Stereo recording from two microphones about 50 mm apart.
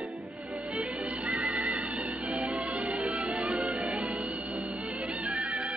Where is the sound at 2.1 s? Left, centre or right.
Right.